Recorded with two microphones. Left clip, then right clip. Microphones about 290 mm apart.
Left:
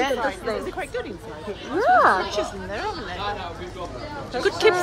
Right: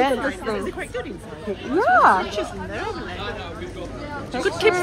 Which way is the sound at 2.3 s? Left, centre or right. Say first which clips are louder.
Left 1 dB; left.